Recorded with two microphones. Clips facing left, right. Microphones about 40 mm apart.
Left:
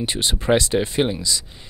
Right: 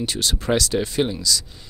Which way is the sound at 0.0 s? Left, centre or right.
Left.